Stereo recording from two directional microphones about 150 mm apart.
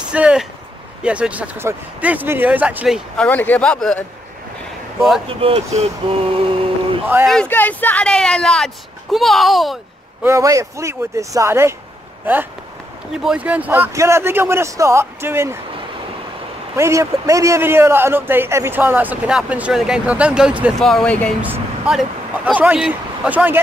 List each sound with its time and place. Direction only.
0.1 s a man's voice: 5° right (ahead or behind)
3.2 s speech: 10° left (ahead or behind)
5.3 s speech: 40° right (ahead or behind)
5.8 s a sound: 40° right (ahead or behind)
7.2 s speech: 10° left (ahead or behind)
10.2 s speech: 20° right (ahead or behind)
13.2 s a man's voice: 5° right (ahead or behind)
16.7 s a man's voice: 20° right (ahead or behind)
20.8 s speech: 5° left (ahead or behind)
21.4 s speech: 5° right (ahead or behind)